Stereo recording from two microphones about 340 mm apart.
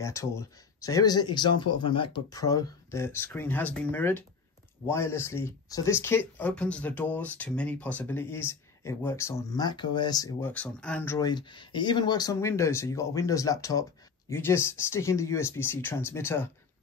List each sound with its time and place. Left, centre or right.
0.0 s speech: centre